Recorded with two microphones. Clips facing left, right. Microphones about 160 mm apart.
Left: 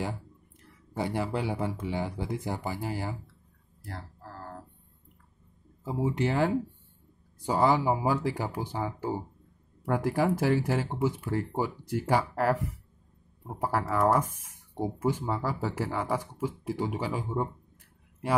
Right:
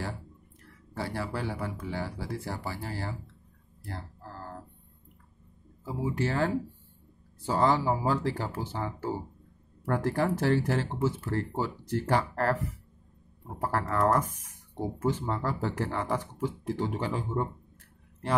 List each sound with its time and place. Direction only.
0.9 s speech: 15° left (ahead or behind)
3.8 s crow: centre (ahead or behind)
5.9 s speech: 20° left (ahead or behind)
13.6 s speech: 10° left (ahead or behind)